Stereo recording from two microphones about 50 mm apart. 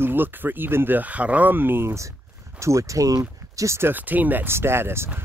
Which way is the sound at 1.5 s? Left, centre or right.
Right.